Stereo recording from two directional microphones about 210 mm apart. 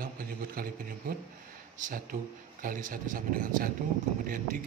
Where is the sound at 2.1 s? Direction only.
35° right (ahead or behind).